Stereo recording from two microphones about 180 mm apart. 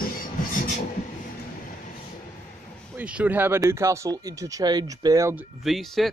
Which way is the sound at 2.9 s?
5° right (ahead or behind).